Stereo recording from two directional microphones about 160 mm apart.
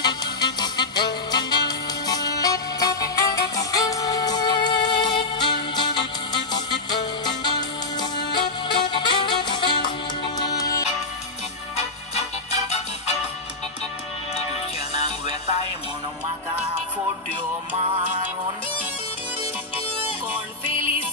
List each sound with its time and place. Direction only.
0.0 s music: 25° left (ahead or behind)
12.4 s music: 45° left (ahead or behind)